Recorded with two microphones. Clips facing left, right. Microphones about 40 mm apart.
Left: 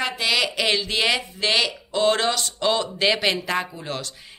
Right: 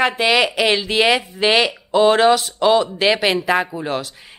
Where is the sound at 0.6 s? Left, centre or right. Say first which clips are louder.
Right 6 dB; centre.